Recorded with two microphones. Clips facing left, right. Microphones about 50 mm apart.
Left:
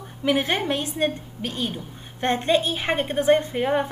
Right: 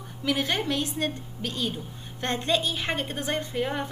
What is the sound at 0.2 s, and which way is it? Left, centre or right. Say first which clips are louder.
A woman's voice: left 5 dB; left.